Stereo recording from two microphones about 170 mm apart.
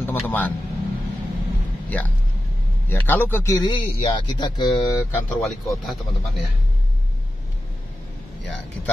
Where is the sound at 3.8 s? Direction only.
30° left (ahead or behind).